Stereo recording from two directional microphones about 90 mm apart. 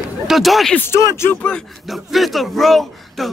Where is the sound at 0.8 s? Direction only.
30° left (ahead or behind).